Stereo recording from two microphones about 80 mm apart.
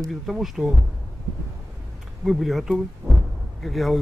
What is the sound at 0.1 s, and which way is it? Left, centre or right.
Speech, centre.